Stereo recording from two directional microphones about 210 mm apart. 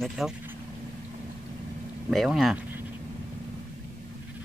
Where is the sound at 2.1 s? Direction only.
Centre (ahead or behind).